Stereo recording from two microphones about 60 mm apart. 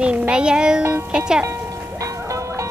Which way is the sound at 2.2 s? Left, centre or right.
Right.